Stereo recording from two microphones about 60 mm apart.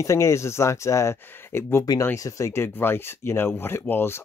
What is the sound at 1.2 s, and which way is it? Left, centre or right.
Speech, left.